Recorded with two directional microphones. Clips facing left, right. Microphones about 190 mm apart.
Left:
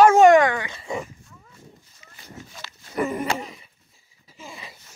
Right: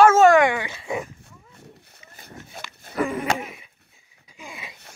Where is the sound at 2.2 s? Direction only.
50° right (ahead or behind).